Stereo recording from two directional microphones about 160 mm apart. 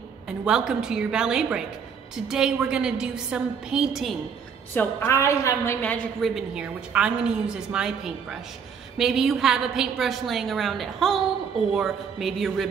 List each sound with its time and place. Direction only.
0.5 s a woman's voice: 5° right (ahead or behind)
4.7 s a woman's voice: 15° left (ahead or behind)
6.2 s a woman's voice: 5° right (ahead or behind)